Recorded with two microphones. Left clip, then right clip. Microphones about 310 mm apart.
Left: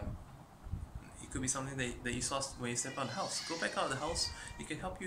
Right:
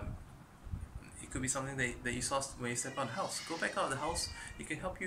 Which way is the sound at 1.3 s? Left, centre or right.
Centre.